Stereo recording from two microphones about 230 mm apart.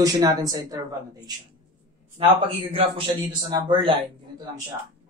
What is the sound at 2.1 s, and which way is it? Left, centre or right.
A man's voice, right.